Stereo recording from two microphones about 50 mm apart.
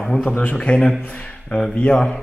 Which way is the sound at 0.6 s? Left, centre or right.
Left.